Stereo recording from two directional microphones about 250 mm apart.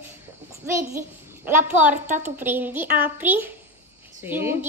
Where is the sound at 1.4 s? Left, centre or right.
Centre.